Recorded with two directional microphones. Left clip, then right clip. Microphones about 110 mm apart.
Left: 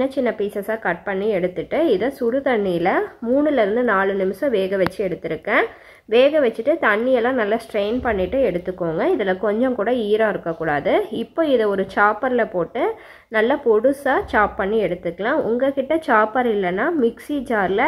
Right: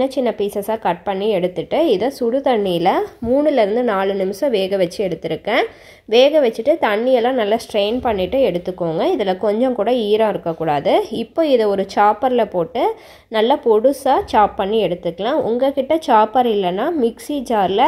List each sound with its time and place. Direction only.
0.0 s a woman's voice: 35° right (ahead or behind)